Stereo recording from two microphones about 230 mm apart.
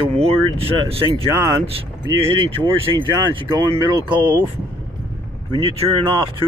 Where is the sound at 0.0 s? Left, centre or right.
Right.